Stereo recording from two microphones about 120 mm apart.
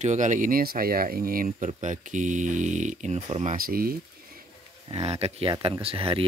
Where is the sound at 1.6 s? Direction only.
75° right (ahead or behind).